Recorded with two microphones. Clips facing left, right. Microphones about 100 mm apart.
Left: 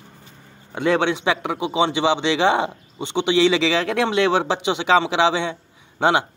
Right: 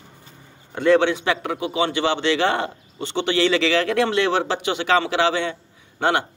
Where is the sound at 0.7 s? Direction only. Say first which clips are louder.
Right 3 dB; 15° left (ahead or behind).